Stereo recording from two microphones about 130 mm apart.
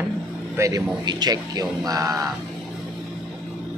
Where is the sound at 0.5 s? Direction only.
25° right (ahead or behind).